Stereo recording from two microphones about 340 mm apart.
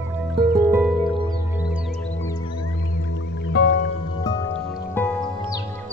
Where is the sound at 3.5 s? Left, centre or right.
Left.